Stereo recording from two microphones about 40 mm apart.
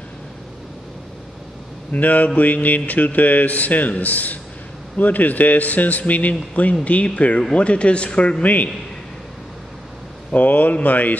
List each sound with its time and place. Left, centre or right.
1.9 s speech: left
8.4 s speech: left
10.3 s speech: left